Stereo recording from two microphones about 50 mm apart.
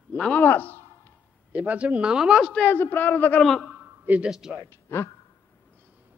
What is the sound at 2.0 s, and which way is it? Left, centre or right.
Speech, centre.